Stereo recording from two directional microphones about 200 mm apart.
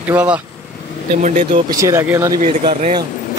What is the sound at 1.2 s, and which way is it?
Speech, 40° right (ahead or behind).